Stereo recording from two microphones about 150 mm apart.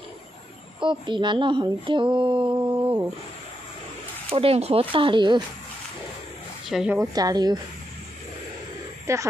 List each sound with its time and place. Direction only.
0.7 s speech: 30° right (ahead or behind)
4.3 s speech: 40° right (ahead or behind)
6.7 s a woman's voice: 5° right (ahead or behind)
7.0 s a woman's voice: 25° right (ahead or behind)
9.0 s speech: 20° right (ahead or behind)